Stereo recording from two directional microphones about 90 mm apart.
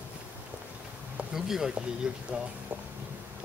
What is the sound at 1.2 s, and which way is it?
Speech, 10° right (ahead or behind).